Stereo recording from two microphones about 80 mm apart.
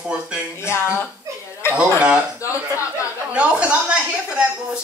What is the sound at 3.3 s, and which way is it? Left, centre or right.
Speech, centre.